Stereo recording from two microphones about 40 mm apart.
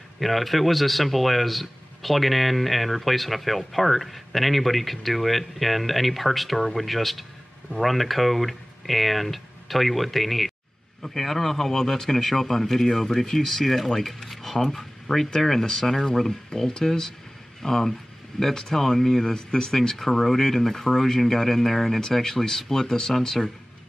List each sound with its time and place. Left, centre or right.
0.2 s speech: centre